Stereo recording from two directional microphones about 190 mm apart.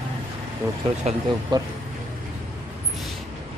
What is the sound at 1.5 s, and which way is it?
Speech, 20° right (ahead or behind).